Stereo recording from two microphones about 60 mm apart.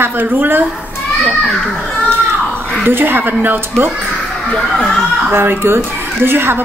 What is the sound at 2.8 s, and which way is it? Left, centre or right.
Speech, right.